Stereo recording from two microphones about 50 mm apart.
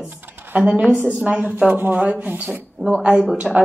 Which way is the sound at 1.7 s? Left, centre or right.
Right.